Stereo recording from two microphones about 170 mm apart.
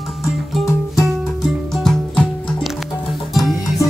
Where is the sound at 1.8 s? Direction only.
5° left (ahead or behind).